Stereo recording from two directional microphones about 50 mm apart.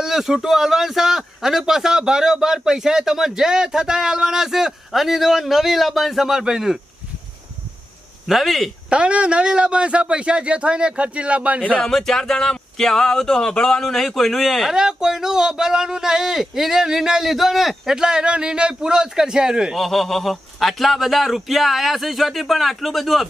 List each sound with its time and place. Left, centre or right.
0.0 s a man's voice: centre
8.3 s speech: centre
8.8 s a man's voice: right
11.8 s speech: centre
14.7 s a man's voice: centre
19.7 s speech: centre